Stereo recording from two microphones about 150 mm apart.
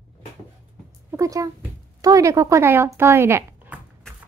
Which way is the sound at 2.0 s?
20° right (ahead or behind).